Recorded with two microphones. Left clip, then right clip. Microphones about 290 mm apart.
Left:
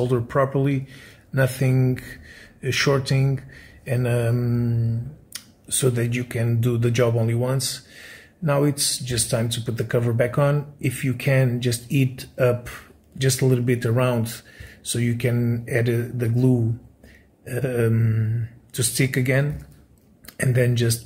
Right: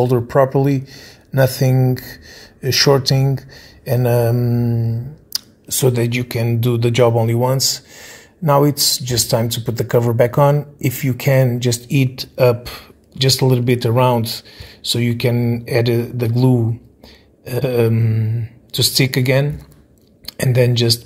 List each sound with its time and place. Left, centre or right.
0.0 s speech: centre